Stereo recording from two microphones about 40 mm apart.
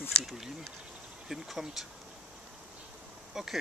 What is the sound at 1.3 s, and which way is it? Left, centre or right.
Speech, centre.